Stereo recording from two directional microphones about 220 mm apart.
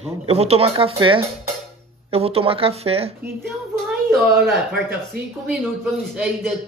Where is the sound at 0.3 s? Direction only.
30° right (ahead or behind).